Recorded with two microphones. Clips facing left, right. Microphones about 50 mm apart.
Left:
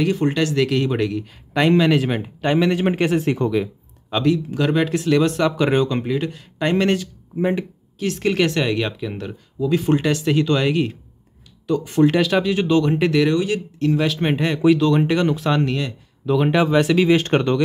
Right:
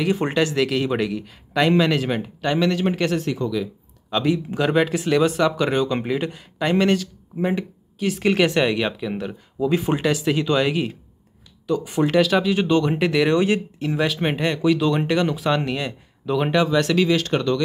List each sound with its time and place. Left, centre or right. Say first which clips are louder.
0.1 s speech: left 1 dB; centre
0.6 s a man's voice: left 2 dB; centre; by 3.3 s left
3.3 s speech: left 4 dB; left
4.1 s a man's voice: even; centre
4.6 s speech: even; centre
5.9 s speech: left 1 dB; centre
6.6 s speech: even; centre
13.3 s speech: right 1 dB; right
13.7 s speech: left 3 dB; centre
16.8 s a man's voice: left 2 dB; centre
17.1 s speech: left 3 dB; left